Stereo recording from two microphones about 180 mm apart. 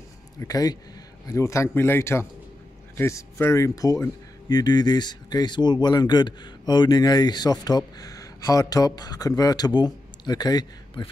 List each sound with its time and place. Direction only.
0.4 s speech: 20° left (ahead or behind)